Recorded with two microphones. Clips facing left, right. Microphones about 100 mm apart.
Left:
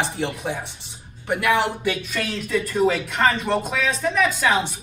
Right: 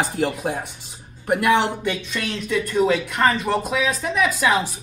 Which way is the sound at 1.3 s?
35° right (ahead or behind).